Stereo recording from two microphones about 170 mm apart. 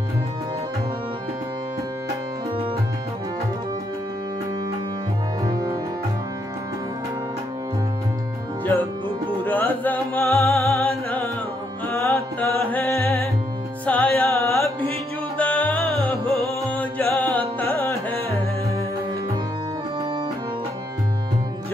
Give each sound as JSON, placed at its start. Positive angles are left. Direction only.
{"t": 5.4, "sound": "music", "side_deg": -20}
{"t": 9.4, "sound": "music", "side_deg": 10}